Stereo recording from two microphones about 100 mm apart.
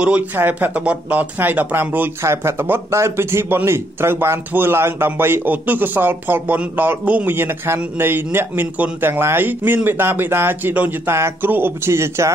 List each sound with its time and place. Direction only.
0.0 s speech: 15° right (ahead or behind)